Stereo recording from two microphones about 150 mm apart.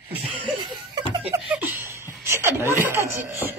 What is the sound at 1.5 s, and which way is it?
Chuckle, 15° right (ahead or behind).